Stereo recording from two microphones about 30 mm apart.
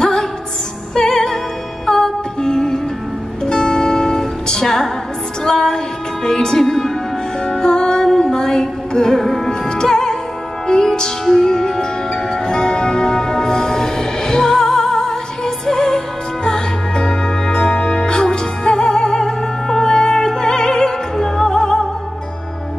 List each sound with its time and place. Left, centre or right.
0.0 s music: centre
9.5 s music: left
16.4 s music: left
19.8 s music: left
20.2 s opera: centre